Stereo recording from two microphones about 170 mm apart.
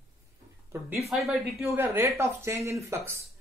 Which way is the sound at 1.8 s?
15° right (ahead or behind).